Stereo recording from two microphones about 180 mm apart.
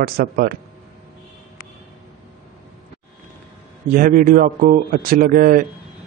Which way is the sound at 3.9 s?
50° right (ahead or behind).